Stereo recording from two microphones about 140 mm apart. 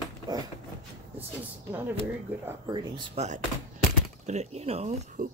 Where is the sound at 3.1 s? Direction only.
55° right (ahead or behind).